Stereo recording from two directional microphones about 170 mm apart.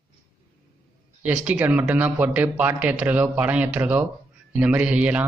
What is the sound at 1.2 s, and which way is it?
Speech, 10° right (ahead or behind).